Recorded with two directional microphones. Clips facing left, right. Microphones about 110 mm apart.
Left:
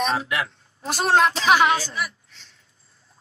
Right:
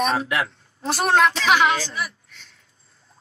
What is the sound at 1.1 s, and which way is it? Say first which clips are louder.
Child singing: left 1 dB; 35° left (ahead or behind).